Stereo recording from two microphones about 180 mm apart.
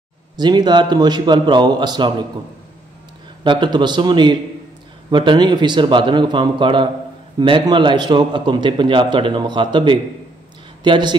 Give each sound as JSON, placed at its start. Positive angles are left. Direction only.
{"t": 0.4, "sound": "a man's voice", "side_deg": -25}
{"t": 3.4, "sound": "a man's voice", "side_deg": -25}